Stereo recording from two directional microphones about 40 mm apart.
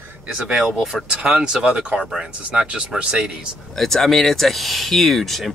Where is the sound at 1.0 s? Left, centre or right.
Right.